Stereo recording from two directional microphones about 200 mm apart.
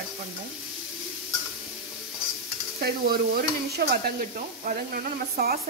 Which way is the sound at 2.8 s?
50° right (ahead or behind).